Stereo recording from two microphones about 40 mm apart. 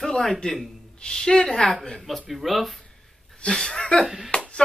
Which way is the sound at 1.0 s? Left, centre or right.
Centre.